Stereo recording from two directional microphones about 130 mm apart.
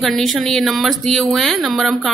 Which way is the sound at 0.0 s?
Centre (ahead or behind).